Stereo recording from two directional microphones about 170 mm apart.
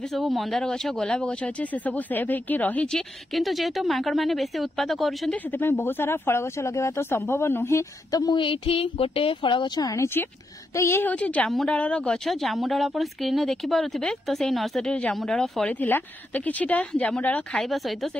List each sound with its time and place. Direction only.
0.1 s speech: centre (ahead or behind)
5.5 s speech: 10° left (ahead or behind)